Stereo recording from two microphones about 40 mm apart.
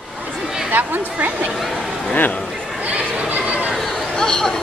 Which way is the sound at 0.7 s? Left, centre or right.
Right.